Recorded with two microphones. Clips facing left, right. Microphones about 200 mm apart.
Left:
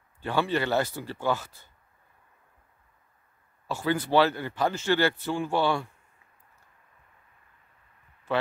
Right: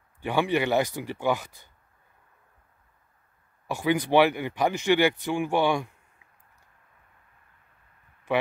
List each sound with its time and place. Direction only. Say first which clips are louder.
0.2 s speech: right 2 dB; 15° right (ahead or behind)
3.6 s speech: right 3 dB; 15° right (ahead or behind)
8.3 s speech: right 2 dB; 15° right (ahead or behind)